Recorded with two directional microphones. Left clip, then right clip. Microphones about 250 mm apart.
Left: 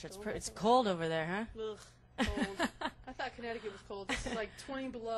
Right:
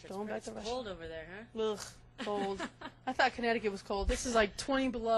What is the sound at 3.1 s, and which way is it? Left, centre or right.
Speech, right.